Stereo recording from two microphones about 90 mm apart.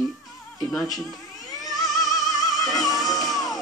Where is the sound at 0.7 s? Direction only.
Centre (ahead or behind).